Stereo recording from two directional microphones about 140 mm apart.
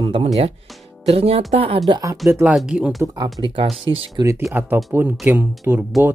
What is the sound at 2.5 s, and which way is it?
Speech, 5° right (ahead or behind).